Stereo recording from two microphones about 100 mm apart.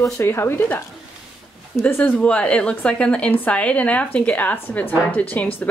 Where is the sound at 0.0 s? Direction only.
25° left (ahead or behind).